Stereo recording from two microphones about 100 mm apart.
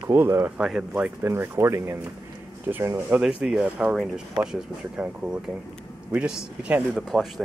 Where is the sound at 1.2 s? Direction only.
25° right (ahead or behind).